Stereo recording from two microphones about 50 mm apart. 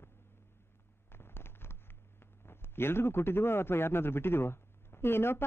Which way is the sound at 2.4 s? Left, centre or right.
Left.